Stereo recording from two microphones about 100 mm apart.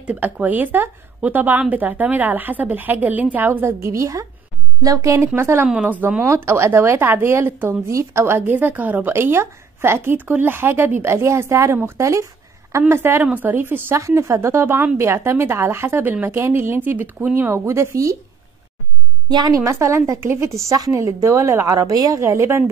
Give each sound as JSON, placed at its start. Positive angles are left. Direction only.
{"t": 0.0, "sound": "a woman's voice", "side_deg": -15}
{"t": 5.7, "sound": "a woman's voice", "side_deg": -15}
{"t": 6.2, "sound": "speech", "side_deg": -25}
{"t": 19.2, "sound": "a woman's voice", "side_deg": -45}
{"t": 19.6, "sound": "speech", "side_deg": -30}